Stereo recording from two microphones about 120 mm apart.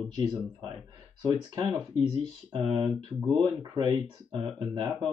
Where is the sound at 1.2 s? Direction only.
35° right (ahead or behind).